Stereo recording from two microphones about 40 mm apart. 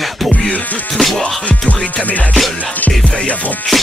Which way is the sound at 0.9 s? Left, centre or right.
Centre.